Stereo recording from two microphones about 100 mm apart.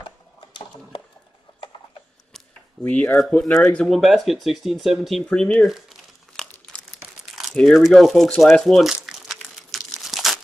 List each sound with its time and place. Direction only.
0.4 s a sound: 55° left (ahead or behind)
2.8 s speech: 15° left (ahead or behind)
6.5 s crumpling: 10° left (ahead or behind)
7.5 s speech: 5° left (ahead or behind)
8.5 s crumpling: centre (ahead or behind)